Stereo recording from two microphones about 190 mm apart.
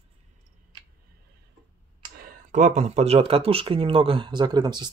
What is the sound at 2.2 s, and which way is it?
Speech, 40° right (ahead or behind).